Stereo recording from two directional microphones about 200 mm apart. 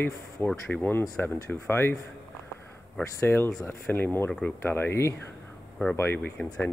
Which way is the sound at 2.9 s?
10° left (ahead or behind).